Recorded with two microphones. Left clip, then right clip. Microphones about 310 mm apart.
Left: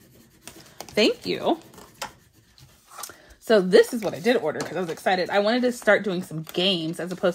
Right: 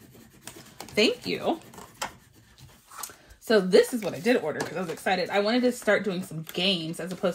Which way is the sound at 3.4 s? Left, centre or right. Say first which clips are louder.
Left 3 dB; left.